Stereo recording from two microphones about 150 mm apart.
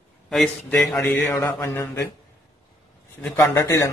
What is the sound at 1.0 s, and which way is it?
Mantra, 20° left (ahead or behind).